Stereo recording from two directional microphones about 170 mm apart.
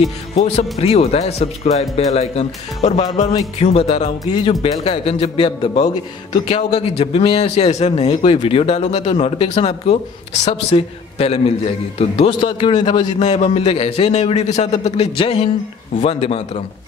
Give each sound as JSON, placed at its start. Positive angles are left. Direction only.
{"t": 0.6, "sound": "speech", "side_deg": 35}
{"t": 4.3, "sound": "a man's voice", "side_deg": 25}
{"t": 4.8, "sound": "speech", "side_deg": 35}
{"t": 8.1, "sound": "speech", "side_deg": 30}
{"t": 12.3, "sound": "a man's voice", "side_deg": 25}
{"t": 13.2, "sound": "speech", "side_deg": 40}